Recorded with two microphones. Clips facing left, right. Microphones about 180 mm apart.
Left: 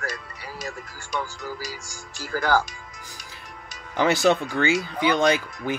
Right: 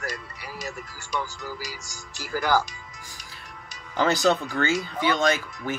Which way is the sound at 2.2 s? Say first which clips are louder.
Left 1 dB; 10° right (ahead or behind).